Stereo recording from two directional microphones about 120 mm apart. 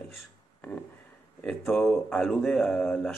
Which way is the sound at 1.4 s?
5° left (ahead or behind).